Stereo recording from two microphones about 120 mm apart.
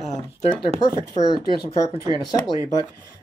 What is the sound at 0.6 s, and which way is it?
Speech, 30° left (ahead or behind).